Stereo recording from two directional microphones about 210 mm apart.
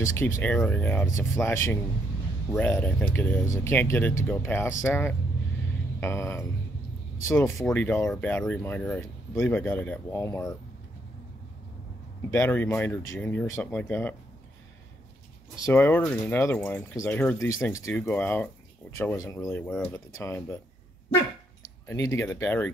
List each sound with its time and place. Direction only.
0.0 s speech: 10° left (ahead or behind)
12.3 s speech: 10° left (ahead or behind)
15.6 s speech: 10° left (ahead or behind)
21.8 s speech: 15° left (ahead or behind)